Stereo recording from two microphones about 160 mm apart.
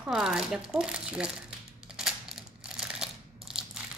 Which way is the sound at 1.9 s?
5° right (ahead or behind).